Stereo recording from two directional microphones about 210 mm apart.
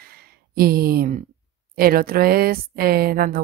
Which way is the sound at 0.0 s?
45° right (ahead or behind).